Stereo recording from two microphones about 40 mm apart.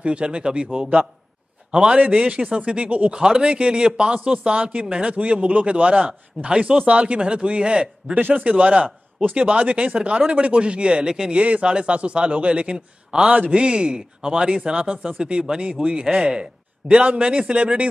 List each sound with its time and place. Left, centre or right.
0.0 s a man's voice: right
3.2 s a man's voice: centre
8.1 s a man's voice: right; by 11.3 s centre
11.3 s a man's voice: right
12.7 s a man's voice: centre